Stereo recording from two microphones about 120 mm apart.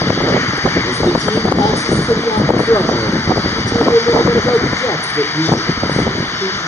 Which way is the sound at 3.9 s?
25° left (ahead or behind).